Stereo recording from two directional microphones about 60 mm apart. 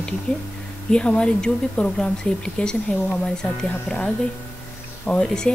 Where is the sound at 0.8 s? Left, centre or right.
Centre.